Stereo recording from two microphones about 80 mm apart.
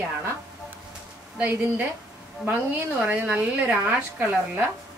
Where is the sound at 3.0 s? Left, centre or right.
Centre.